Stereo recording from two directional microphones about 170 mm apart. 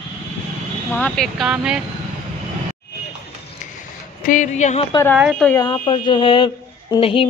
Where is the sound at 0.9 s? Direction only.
5° left (ahead or behind).